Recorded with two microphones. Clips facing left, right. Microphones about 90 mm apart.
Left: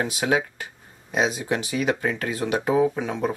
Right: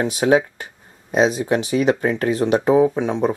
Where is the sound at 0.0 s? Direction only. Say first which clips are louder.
Right 7 dB; 30° right (ahead or behind).